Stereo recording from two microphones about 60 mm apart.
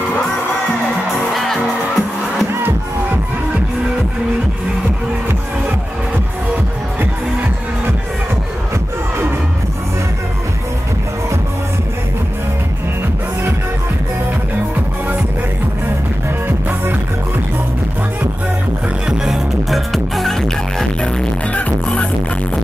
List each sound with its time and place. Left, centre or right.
1.3 s music: centre
19.0 s music: centre
21.5 s music: left